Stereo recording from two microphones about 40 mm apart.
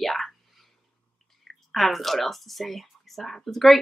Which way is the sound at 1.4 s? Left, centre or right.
Centre.